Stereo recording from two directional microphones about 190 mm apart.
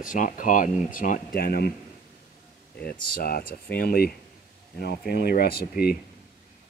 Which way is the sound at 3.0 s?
50° left (ahead or behind).